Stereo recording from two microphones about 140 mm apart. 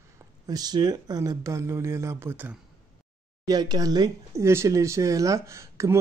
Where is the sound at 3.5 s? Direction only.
30° right (ahead or behind).